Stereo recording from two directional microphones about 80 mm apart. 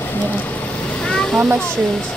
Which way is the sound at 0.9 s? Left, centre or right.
Centre.